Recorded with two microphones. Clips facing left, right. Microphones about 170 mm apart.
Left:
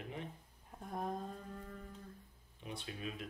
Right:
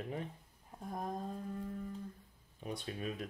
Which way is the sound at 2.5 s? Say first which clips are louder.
Right 5 dB; 45° right (ahead or behind).